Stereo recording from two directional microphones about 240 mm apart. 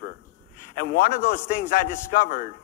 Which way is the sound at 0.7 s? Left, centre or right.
Left.